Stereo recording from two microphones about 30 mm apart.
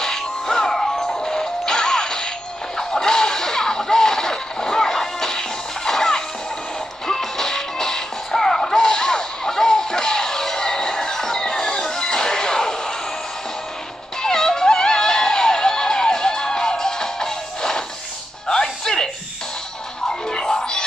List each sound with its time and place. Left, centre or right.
0.0 s music: centre
2.8 s a sound: centre
5.9 s music: centre
14.2 s music: centre
20.1 s music: left